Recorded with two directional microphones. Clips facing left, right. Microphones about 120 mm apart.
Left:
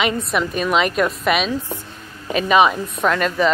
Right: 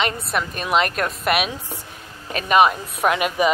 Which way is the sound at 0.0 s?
Centre (ahead or behind).